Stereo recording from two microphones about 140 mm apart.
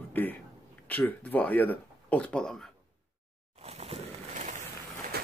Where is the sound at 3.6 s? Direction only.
50° right (ahead or behind).